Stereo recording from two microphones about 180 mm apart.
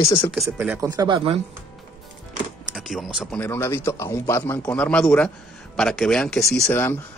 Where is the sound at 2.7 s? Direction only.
Centre (ahead or behind).